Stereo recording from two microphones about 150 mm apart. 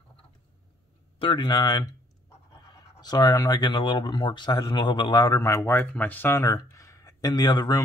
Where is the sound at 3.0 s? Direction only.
25° left (ahead or behind).